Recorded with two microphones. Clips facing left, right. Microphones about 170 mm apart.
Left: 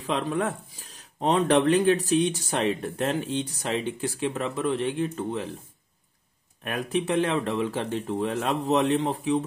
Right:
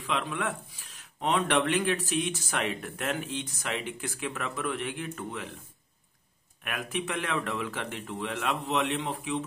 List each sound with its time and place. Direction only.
0.0 s speech: 35° left (ahead or behind)
6.6 s speech: 35° left (ahead or behind)